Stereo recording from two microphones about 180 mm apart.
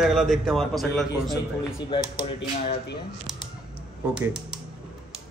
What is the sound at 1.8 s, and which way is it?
Speech, 30° left (ahead or behind).